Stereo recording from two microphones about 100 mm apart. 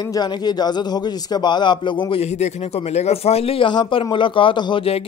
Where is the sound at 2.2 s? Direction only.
90° left; by 3.7 s 70° left (ahead or behind).